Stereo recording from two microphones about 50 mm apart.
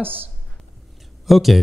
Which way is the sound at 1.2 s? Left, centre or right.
Centre.